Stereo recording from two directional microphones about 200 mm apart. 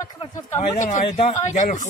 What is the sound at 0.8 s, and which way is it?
Speech, 35° left (ahead or behind).